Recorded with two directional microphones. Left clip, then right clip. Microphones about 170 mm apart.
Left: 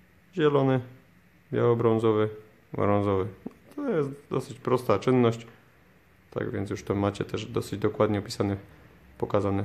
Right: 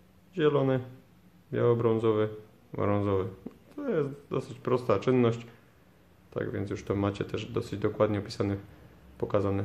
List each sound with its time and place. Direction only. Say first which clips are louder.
0.3 s speech: left 2 dB; 30° left (ahead or behind)